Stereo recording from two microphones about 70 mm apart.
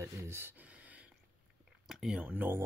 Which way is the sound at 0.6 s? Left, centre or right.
Right.